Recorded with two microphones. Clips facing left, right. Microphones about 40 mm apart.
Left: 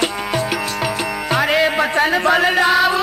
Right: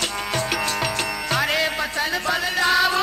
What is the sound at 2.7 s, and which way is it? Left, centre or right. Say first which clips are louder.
Music: left 4 dB; centre.